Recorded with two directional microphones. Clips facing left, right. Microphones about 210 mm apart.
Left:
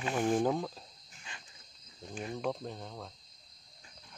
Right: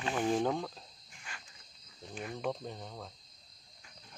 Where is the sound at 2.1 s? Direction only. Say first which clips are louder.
Left 2 dB; 30° left (ahead or behind).